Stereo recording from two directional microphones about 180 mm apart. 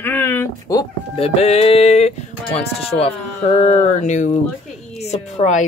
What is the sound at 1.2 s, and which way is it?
A woman's voice, 35° left (ahead or behind).